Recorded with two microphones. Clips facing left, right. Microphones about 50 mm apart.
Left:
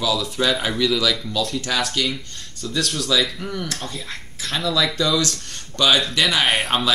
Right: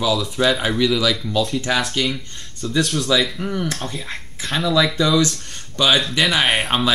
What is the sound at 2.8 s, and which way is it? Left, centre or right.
Speech, centre.